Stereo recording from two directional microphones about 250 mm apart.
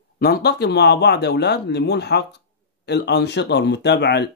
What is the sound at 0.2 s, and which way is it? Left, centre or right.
Speech, left.